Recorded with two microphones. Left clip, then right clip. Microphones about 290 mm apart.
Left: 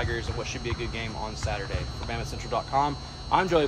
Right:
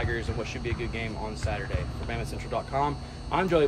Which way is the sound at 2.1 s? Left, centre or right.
Centre.